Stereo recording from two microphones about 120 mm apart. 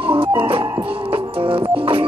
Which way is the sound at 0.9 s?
50° right (ahead or behind).